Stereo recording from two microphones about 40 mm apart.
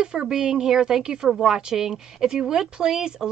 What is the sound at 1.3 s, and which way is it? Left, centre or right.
Speech, centre.